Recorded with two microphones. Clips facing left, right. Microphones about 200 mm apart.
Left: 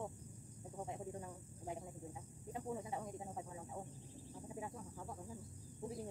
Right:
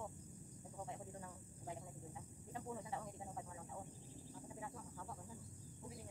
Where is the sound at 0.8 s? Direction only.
20° left (ahead or behind).